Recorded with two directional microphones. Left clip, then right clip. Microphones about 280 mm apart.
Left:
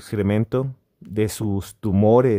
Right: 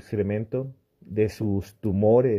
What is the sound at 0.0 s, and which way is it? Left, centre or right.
Speech, centre.